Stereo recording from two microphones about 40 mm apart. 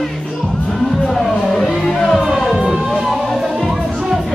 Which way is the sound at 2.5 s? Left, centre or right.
Centre.